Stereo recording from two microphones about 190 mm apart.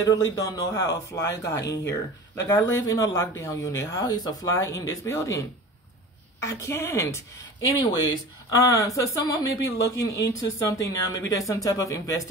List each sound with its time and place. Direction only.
0.0 s speech: 20° left (ahead or behind)
6.4 s speech: 15° left (ahead or behind)